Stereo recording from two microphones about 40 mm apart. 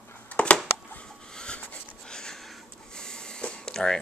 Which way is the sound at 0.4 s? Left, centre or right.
Left.